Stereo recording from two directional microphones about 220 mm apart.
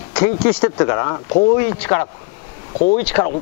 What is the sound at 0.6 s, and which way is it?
Speech, 20° left (ahead or behind).